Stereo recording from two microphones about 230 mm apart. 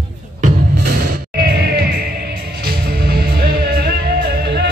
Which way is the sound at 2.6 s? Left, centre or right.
Right.